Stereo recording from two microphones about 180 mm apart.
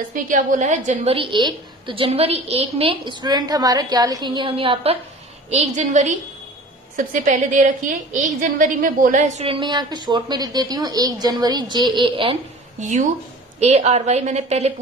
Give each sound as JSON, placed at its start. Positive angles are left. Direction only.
{"t": 0.1, "sound": "a woman's voice", "side_deg": -45}
{"t": 12.8, "sound": "a woman's voice", "side_deg": -45}